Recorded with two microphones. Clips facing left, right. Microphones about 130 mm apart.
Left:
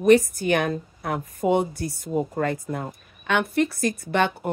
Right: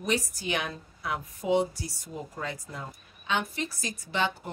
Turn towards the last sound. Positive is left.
turn(degrees=55)  # may be behind; listen again after turning